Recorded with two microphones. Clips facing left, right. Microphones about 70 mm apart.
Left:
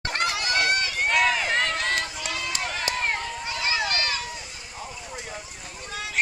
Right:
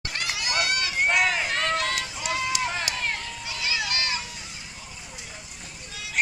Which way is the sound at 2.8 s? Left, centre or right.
Left.